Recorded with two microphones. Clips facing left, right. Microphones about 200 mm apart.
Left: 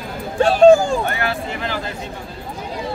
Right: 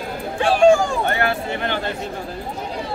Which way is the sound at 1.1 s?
25° right (ahead or behind).